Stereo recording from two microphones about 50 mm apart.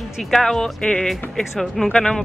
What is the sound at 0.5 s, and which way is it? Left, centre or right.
Speech, centre.